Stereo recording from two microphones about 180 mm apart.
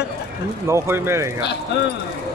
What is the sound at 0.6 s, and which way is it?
Speech, 15° right (ahead or behind).